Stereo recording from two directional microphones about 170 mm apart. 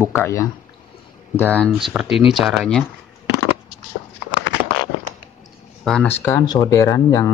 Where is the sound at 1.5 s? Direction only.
10° left (ahead or behind).